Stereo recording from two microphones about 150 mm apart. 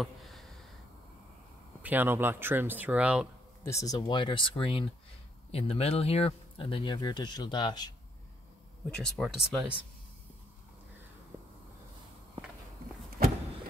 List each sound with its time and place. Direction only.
0.0 s a sound: centre (ahead or behind)
1.8 s speech: 10° right (ahead or behind)
3.6 s speech: 20° left (ahead or behind)
8.9 s speech: 5° left (ahead or behind)
11.3 s vehicle: 10° right (ahead or behind)